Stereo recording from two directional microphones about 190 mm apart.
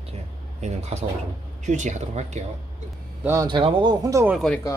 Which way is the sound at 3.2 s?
15° right (ahead or behind).